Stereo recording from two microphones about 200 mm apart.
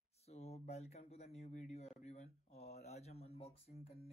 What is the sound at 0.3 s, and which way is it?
Speech, 30° left (ahead or behind).